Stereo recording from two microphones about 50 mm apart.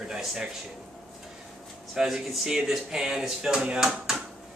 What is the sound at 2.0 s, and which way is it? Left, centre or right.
Speech, centre.